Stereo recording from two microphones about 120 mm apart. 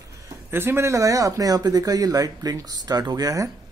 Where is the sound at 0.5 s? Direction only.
20° right (ahead or behind).